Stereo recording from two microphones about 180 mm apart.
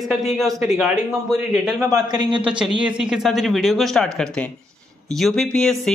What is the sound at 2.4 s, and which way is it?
Speech, 5° right (ahead or behind).